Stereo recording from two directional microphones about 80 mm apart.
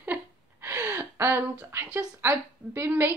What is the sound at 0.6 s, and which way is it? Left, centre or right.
Gasp, right.